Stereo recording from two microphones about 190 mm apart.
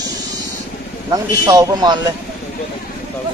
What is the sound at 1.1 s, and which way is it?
A man's voice, 20° right (ahead or behind).